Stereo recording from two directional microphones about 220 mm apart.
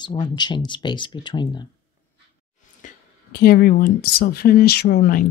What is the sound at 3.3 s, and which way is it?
Speech, 45° left (ahead or behind).